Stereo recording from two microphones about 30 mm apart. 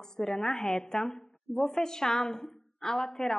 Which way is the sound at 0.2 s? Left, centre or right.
Centre.